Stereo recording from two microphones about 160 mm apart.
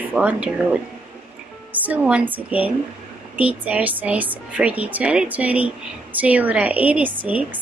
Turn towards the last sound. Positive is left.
turn(degrees=-10)  # may be behind; listen again after turning